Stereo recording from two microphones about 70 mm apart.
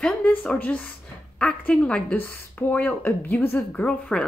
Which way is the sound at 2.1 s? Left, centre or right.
Left.